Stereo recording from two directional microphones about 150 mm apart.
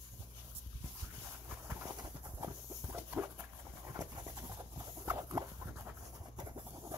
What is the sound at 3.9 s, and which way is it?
Horse, 25° right (ahead or behind).